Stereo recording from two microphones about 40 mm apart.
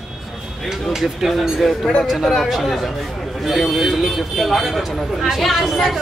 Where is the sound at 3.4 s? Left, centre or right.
Centre.